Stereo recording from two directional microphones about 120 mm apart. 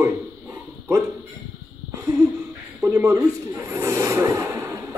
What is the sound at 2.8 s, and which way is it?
A man's voice, 20° right (ahead or behind).